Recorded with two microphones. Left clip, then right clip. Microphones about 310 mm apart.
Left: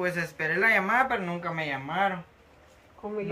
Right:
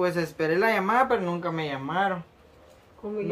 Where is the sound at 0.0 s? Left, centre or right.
Centre.